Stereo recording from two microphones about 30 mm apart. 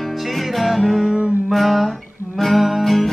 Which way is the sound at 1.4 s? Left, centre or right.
Centre.